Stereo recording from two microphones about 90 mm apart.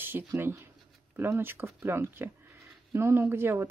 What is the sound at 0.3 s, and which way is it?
Speech, 30° right (ahead or behind).